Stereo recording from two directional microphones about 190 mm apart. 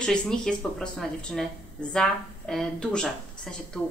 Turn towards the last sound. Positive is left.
turn(degrees=5)  # may be behind; listen again after turning